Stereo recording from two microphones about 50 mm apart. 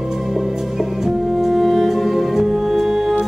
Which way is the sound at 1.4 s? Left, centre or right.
Centre.